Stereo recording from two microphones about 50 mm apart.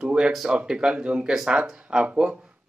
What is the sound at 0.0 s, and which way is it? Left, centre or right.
Speech, right.